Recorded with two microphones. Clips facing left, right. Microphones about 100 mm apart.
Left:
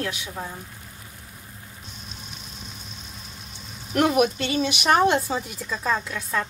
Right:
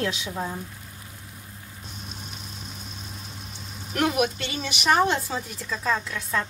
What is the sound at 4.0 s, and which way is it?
Speech, 30° left (ahead or behind).